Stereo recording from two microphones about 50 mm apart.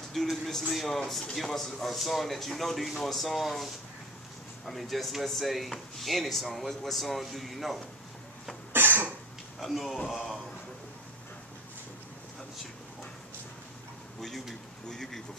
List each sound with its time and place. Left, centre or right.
0.1 s speech: centre
8.7 s cough: right
9.6 s speech: centre
10.0 s a man's voice: centre
14.9 s speech: centre